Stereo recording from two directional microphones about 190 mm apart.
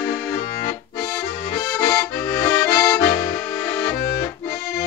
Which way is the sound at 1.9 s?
10° left (ahead or behind).